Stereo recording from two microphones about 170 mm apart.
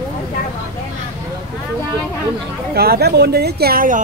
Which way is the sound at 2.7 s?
70° right (ahead or behind).